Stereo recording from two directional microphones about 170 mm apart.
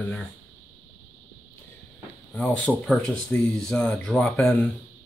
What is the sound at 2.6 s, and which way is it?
Speech, centre (ahead or behind).